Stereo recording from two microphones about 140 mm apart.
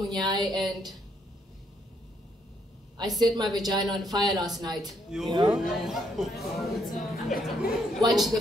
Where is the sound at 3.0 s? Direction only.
Centre (ahead or behind).